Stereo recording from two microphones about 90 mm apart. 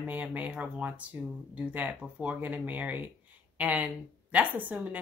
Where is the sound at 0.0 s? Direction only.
20° right (ahead or behind).